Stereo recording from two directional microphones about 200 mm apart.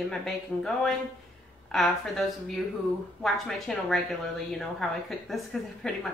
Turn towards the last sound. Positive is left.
turn(degrees=0)  # may be behind; listen again after turning